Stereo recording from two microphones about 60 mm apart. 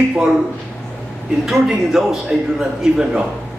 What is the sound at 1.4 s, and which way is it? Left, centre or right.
A man's voice, centre.